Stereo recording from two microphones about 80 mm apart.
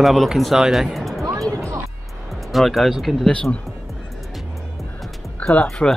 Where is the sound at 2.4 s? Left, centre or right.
Centre.